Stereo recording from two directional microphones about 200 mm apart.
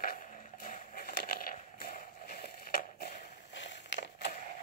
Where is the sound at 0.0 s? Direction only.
45° left (ahead or behind); by 4.4 s 60° left (ahead or behind).